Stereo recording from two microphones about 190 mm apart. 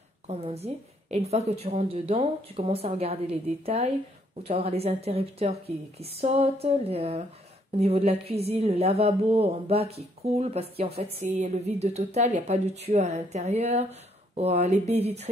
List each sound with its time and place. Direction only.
0.3 s speech: 30° right (ahead or behind)